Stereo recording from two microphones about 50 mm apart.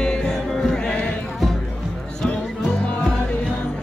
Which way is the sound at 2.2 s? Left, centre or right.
Centre.